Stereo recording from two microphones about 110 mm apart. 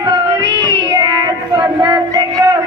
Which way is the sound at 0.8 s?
35° right (ahead or behind).